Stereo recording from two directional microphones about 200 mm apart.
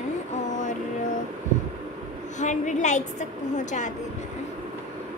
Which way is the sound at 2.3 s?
35° left (ahead or behind).